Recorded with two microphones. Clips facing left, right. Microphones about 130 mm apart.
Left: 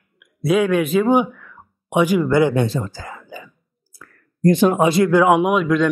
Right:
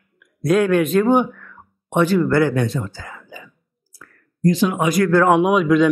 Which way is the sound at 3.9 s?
50° left (ahead or behind).